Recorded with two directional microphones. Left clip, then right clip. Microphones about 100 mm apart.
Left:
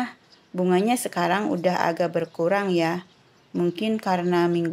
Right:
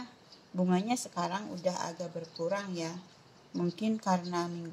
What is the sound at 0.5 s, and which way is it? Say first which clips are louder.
Speech: left 10 dB; 30° left (ahead or behind).